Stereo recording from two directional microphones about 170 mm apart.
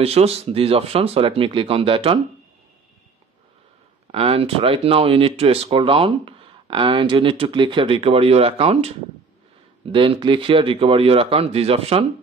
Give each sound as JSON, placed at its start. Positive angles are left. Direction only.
{"t": 0.0, "sound": "speech", "side_deg": -35}
{"t": 4.1, "sound": "speech", "side_deg": -35}